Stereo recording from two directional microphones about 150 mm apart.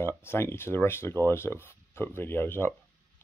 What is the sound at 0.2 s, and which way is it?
Speech, 15° left (ahead or behind).